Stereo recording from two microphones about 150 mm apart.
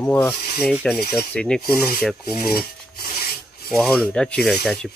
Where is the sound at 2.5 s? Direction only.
90° left.